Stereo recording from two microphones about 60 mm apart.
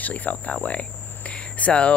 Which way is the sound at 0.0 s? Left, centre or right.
Left.